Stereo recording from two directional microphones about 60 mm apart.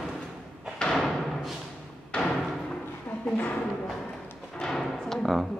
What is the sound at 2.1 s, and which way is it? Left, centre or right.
Thump, centre.